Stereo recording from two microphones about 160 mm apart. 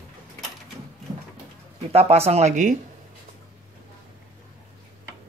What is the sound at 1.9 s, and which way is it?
Speech, 40° right (ahead or behind).